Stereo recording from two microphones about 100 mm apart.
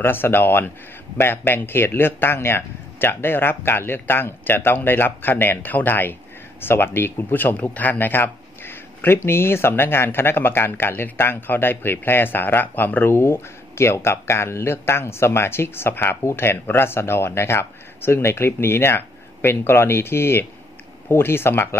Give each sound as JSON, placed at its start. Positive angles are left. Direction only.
{"t": 0.0, "sound": "speech", "side_deg": 20}